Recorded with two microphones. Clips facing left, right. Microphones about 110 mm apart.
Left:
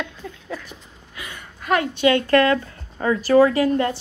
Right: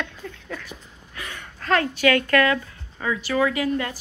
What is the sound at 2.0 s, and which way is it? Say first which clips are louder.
Speech: left 4 dB; 25° left (ahead or behind).